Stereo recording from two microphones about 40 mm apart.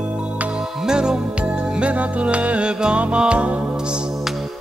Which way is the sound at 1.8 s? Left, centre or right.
Right.